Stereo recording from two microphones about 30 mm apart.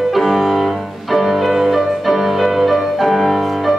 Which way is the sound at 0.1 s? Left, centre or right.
Centre.